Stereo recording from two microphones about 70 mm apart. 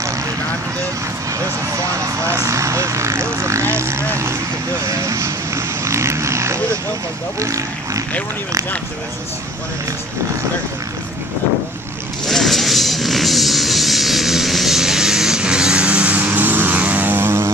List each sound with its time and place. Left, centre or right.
1.4 s vehicle: right
4.8 s speech: right
5.9 s vehicle: right
7.3 s speech: right
12.3 s a sound: centre; by 17.5 s right